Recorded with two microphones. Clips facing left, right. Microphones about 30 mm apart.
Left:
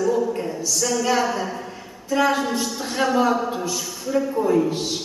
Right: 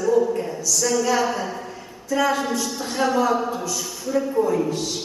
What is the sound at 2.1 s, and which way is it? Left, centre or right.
A man's voice, centre.